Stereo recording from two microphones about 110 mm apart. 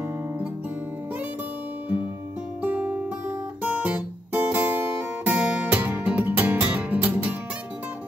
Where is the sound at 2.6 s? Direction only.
15° right (ahead or behind).